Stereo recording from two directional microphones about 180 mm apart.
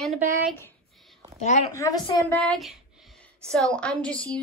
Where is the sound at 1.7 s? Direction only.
20° left (ahead or behind).